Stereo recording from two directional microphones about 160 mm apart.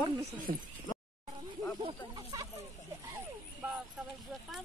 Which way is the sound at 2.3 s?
20° right (ahead or behind).